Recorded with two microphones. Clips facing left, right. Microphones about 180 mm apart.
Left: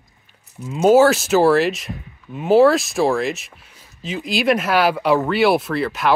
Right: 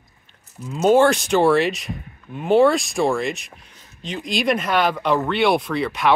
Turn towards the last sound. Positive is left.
turn(degrees=0)  # may be behind; listen again after turning